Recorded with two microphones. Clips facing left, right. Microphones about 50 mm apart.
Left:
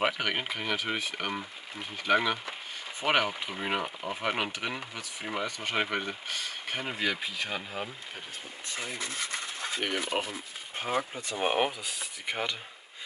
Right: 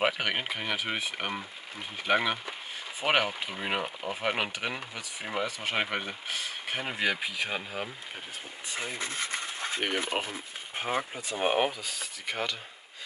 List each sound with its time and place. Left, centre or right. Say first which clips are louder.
0.0 s speech: right 1 dB; centre
8.6 s speech: right 2 dB; centre
11.1 s speech: right 3 dB; centre
11.8 s speech: even; centre